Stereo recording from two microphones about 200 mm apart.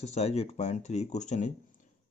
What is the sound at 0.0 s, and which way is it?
Speech, 35° left (ahead or behind).